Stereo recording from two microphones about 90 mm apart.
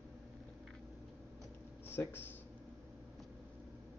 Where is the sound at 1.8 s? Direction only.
25° left (ahead or behind).